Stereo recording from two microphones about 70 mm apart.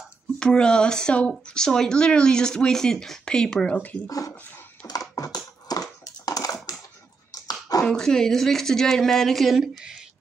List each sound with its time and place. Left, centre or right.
0.4 s speech: centre
5.1 s dog: left
7.4 s a sound: left
7.8 s a woman's voice: centre